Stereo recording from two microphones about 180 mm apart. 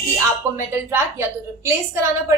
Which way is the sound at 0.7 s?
15° right (ahead or behind).